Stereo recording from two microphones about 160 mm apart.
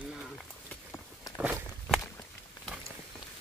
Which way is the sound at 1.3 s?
5° right (ahead or behind).